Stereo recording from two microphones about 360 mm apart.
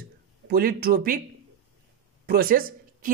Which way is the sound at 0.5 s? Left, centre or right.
Right.